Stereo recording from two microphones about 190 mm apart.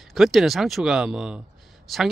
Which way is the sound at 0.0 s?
Centre (ahead or behind).